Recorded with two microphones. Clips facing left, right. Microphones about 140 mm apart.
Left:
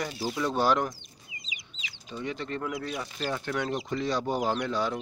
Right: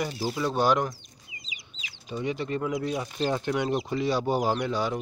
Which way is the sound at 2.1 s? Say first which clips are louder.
Right 4 dB; 10° right (ahead or behind).